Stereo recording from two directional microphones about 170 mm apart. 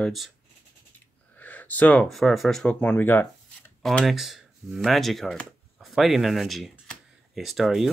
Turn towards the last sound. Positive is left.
turn(degrees=0)  # may be behind; listen again after turning